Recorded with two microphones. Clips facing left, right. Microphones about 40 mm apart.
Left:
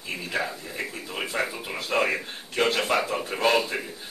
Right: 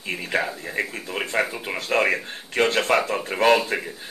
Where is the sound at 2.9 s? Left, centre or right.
Right.